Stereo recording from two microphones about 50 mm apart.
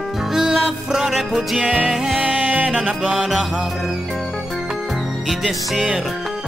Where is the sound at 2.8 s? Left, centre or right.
Centre.